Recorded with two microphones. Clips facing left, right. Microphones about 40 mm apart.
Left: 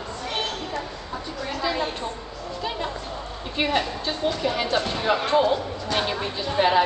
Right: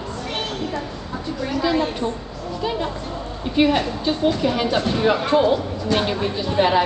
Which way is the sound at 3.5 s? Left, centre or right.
Centre.